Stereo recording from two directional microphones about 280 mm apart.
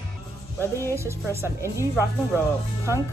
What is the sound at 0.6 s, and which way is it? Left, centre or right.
Music, centre.